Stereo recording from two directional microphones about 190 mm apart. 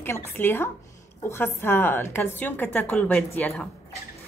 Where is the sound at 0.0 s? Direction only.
10° left (ahead or behind).